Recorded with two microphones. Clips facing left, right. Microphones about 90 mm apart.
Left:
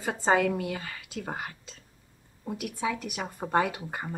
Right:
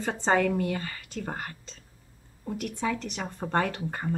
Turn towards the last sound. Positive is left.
turn(degrees=10)  # may be behind; listen again after turning